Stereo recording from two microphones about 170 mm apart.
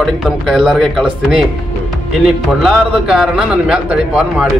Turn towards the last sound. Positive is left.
turn(degrees=-5)  # may be behind; listen again after turning